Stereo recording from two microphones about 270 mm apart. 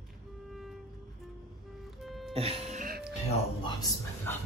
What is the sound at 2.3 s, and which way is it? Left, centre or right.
Music, right.